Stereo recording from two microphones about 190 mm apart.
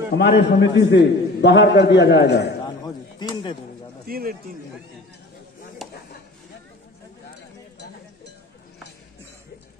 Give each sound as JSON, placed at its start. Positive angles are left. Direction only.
{"t": 0.1, "sound": "a man's voice", "side_deg": 65}
{"t": 2.6, "sound": "chop", "side_deg": 20}
{"t": 4.1, "sound": "a man's voice", "side_deg": -50}